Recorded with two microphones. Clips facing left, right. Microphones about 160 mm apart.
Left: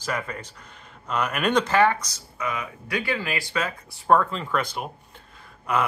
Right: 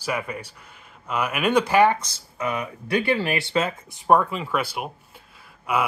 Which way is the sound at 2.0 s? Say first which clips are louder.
Right 3 dB; 30° right (ahead or behind).